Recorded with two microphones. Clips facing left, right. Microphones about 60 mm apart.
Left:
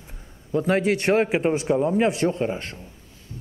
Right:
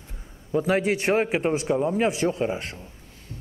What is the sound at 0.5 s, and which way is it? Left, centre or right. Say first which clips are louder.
A man's voice: left 1 dB; centre.